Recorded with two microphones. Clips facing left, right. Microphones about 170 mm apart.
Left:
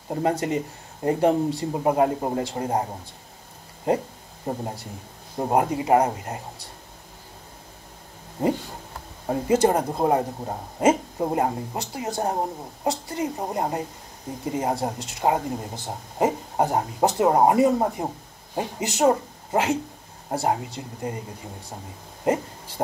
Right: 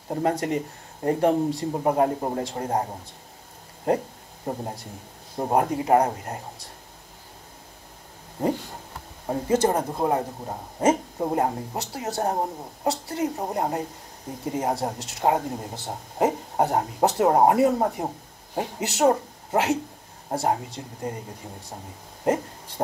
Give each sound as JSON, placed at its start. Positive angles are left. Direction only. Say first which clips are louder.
{"t": 0.1, "sound": "speech", "louder": "left 1 dB", "side_deg": 0}
{"t": 4.5, "sound": "speech", "louder": "left 1 dB", "side_deg": 5}
{"t": 9.3, "sound": "speech", "louder": "left 2 dB", "side_deg": 10}
{"t": 10.8, "sound": "speech", "louder": "left 1 dB", "side_deg": 5}